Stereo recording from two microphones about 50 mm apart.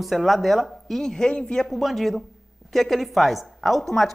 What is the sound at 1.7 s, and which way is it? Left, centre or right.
A woman's voice, centre.